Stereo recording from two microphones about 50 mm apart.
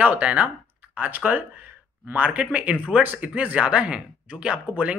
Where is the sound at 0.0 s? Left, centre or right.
Right.